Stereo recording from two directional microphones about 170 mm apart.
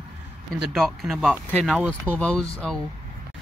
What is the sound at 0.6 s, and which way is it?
Speech, centre (ahead or behind).